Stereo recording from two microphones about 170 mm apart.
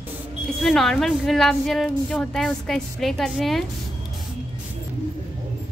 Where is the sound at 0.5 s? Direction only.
Centre (ahead or behind).